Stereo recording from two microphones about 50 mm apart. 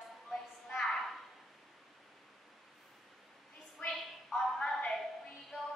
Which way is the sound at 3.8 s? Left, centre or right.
Centre.